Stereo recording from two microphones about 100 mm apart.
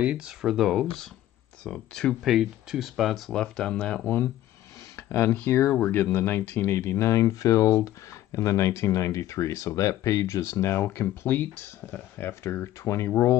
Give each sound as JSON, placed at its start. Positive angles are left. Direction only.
{"t": 0.0, "sound": "speech", "side_deg": -10}
{"t": 4.9, "sound": "speech", "side_deg": 25}